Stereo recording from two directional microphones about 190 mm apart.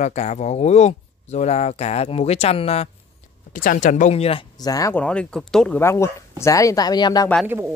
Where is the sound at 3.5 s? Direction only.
45° left (ahead or behind); by 5.0 s 20° left (ahead or behind).